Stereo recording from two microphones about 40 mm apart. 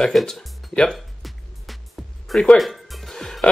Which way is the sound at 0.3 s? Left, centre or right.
Centre.